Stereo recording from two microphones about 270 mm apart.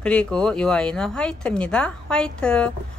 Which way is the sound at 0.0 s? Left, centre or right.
Centre.